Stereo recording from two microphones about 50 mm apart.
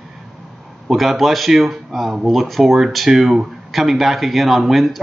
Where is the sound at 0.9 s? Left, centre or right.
Centre.